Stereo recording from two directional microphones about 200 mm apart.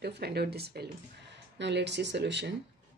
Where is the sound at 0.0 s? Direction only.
55° right (ahead or behind).